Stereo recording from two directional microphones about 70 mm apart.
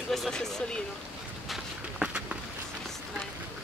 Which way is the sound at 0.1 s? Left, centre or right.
Centre.